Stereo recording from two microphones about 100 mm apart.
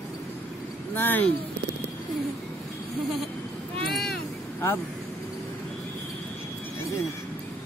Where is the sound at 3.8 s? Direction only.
Centre (ahead or behind).